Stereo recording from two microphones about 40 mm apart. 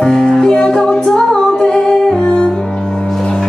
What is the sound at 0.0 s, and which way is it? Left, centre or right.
Music, centre.